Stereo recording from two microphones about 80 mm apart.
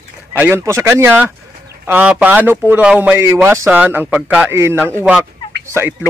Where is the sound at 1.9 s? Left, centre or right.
Right.